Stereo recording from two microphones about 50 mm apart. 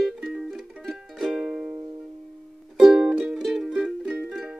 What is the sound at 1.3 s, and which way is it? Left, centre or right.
Music, centre.